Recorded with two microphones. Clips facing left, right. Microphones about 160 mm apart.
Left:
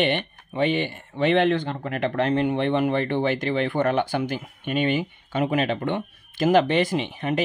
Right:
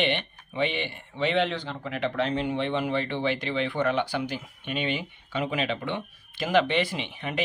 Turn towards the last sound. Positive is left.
turn(degrees=40)  # may be behind; listen again after turning